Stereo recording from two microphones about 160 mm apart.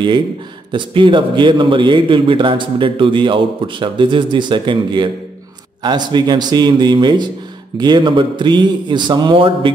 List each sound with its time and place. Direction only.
0.7 s a man's voice: 30° right (ahead or behind)